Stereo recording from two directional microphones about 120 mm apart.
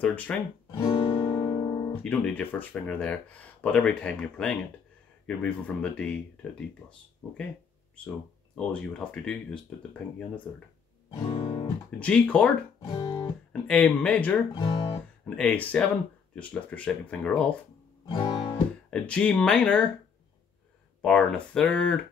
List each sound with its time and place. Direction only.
0.0 s speech: 15° left (ahead or behind)
0.7 s guitar: 35° left (ahead or behind)
2.0 s speech: 10° left (ahead or behind)
8.5 s speech: 10° left (ahead or behind)
11.1 s music: 40° left (ahead or behind)
12.0 s speech: 10° left (ahead or behind)
12.8 s music: 35° left (ahead or behind)
13.5 s speech: 10° left (ahead or behind)
18.0 s guitar: 35° left (ahead or behind)
18.9 s speech: 10° left (ahead or behind)
21.0 s speech: 10° left (ahead or behind)